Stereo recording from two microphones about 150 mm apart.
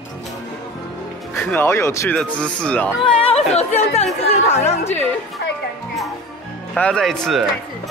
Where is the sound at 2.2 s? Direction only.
10° left (ahead or behind).